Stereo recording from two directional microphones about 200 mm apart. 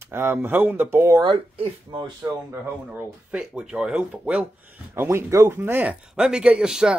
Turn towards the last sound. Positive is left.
turn(degrees=-5)  # may be behind; listen again after turning